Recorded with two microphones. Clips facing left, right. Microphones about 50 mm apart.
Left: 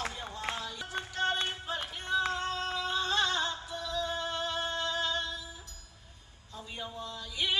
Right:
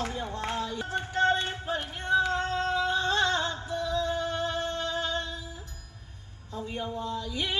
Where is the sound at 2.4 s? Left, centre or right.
Right.